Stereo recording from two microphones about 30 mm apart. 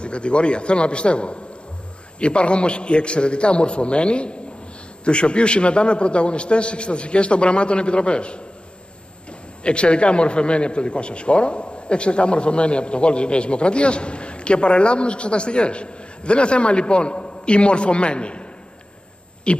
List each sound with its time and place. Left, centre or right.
0.0 s a man's voice: left
9.6 s a man's voice: left